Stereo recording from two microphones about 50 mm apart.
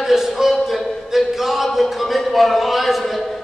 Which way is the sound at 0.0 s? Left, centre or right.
Centre.